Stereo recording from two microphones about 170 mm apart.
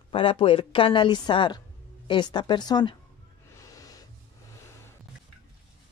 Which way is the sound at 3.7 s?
20° left (ahead or behind).